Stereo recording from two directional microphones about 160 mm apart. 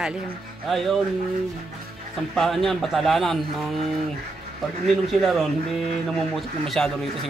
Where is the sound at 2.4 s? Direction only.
Centre (ahead or behind).